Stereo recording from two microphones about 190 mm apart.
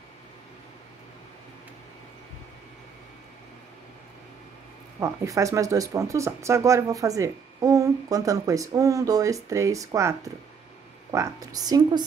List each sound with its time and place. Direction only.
5.0 s a woman's voice: 15° right (ahead or behind)